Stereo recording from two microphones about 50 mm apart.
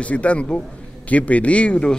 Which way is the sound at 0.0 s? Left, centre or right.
Left.